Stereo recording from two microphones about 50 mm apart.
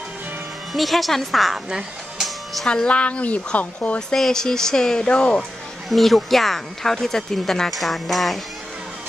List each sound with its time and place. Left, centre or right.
0.7 s speech: centre
1.7 s music: centre
2.2 s music: centre
2.7 s a woman's voice: left
4.1 s a woman's voice: centre
5.9 s speech: centre